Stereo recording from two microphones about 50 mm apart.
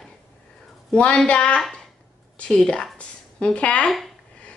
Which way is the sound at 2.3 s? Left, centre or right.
Centre.